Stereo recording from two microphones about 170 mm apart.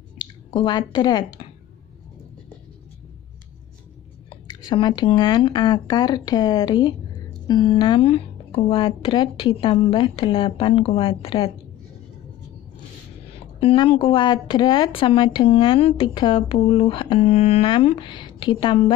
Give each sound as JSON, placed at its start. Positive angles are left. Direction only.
{"t": 0.2, "sound": "speech", "side_deg": 25}
{"t": 4.3, "sound": "speech", "side_deg": 30}
{"t": 13.6, "sound": "speech", "side_deg": 35}